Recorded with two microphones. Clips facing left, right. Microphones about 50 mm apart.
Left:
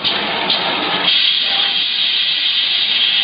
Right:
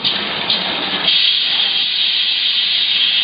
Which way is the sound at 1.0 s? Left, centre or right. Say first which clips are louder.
Even; centre.